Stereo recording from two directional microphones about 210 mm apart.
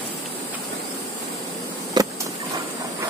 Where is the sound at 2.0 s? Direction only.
20° right (ahead or behind).